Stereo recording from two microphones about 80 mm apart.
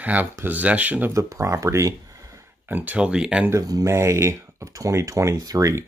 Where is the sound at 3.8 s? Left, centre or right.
Right.